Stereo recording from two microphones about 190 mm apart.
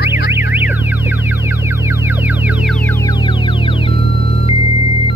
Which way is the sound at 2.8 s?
20° left (ahead or behind).